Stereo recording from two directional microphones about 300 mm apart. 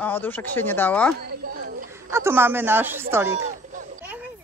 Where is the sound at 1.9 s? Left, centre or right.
Centre.